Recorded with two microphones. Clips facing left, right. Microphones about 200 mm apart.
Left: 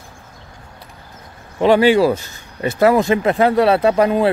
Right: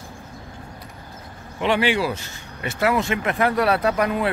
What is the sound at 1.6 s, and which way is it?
Speech, 40° left (ahead or behind).